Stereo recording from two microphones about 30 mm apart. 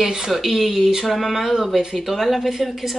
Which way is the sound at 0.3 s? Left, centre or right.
Centre.